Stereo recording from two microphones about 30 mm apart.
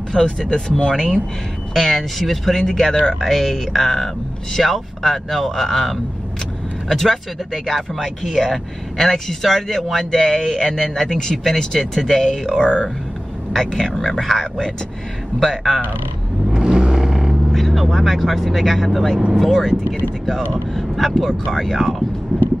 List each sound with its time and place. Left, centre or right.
0.1 s speech: left
1.7 s speech: centre
12.6 s speech: left
13.6 s speech: centre
16.6 s vehicle: right
17.5 s speech: centre